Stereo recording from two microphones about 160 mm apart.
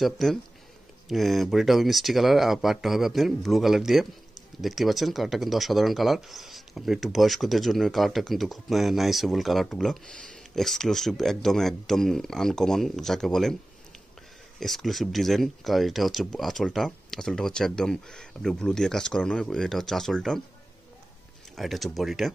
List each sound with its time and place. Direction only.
0.0 s speech: centre (ahead or behind)
14.6 s speech: centre (ahead or behind)
21.5 s speech: centre (ahead or behind)